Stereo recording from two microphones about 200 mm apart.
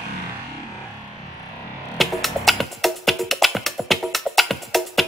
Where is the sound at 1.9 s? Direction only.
Centre (ahead or behind).